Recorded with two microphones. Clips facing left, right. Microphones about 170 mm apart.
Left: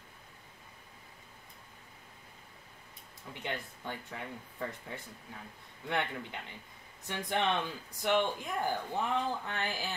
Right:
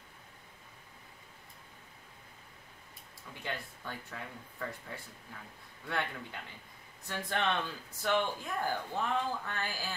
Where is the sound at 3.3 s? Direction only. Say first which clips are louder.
Left 2 dB; 20° left (ahead or behind).